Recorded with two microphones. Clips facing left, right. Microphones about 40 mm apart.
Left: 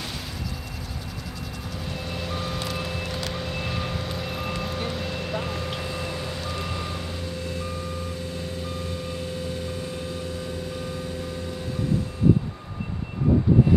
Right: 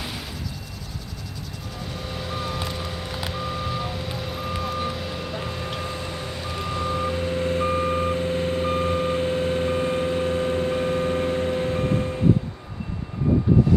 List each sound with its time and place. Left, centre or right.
2.1 s vehicle: centre
3.5 s reversing beeps: centre
4.6 s vehicle: centre
6.4 s reversing beeps: centre
7.0 s reversing beeps: right